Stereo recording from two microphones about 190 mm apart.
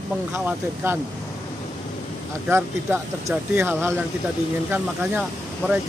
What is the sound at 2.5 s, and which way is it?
Speech, 10° right (ahead or behind).